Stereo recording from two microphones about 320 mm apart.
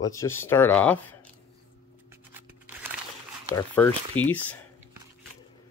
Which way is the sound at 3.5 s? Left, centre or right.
Centre.